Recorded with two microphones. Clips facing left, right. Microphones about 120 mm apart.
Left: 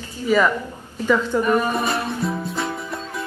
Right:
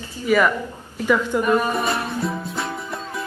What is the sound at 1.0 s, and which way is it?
Speech, 10° right (ahead or behind).